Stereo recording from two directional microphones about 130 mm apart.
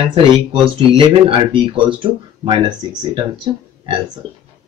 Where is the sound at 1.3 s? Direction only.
40° right (ahead or behind).